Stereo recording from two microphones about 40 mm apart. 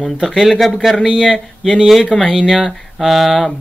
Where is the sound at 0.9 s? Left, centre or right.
Centre.